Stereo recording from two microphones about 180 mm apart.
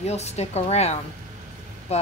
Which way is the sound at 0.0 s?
35° left (ahead or behind).